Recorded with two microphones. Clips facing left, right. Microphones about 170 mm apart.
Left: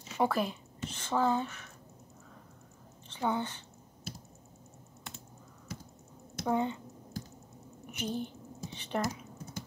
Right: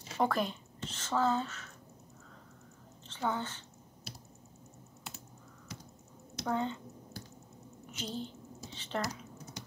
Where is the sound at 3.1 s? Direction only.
15° left (ahead or behind).